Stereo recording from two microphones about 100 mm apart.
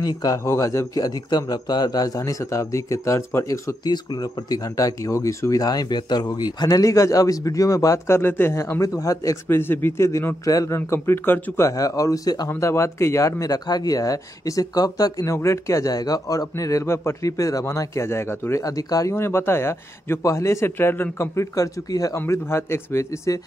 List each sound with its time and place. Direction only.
0.0 s a man's voice: 40° left (ahead or behind)
3.8 s a man's voice: 45° left (ahead or behind)
8.2 s a man's voice: 20° left (ahead or behind); by 15.3 s 40° left (ahead or behind)
15.3 s a man's voice: 30° left (ahead or behind)
19.1 s a man's voice: 25° left (ahead or behind)